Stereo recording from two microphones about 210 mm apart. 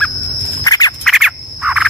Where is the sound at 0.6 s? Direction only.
15° left (ahead or behind).